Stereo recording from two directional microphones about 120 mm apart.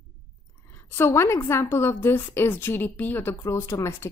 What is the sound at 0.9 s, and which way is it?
A woman's voice, 20° left (ahead or behind).